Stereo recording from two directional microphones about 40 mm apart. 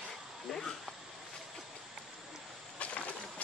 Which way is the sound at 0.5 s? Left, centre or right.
Centre.